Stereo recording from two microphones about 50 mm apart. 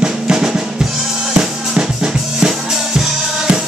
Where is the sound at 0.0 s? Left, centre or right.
Centre.